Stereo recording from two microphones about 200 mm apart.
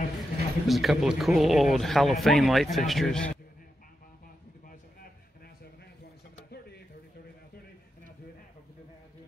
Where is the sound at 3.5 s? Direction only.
45° left (ahead or behind).